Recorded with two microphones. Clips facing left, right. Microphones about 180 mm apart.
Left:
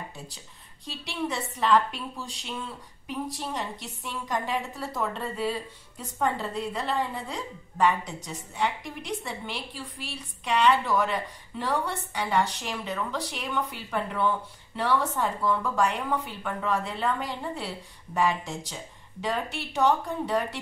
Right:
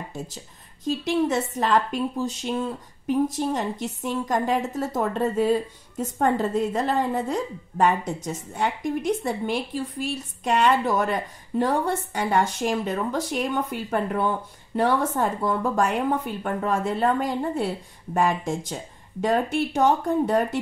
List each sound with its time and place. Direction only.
0.8 s a woman's voice: 45° right (ahead or behind)